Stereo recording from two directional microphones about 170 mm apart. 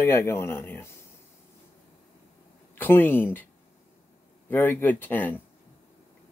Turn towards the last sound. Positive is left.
turn(degrees=10)  # may be behind; listen again after turning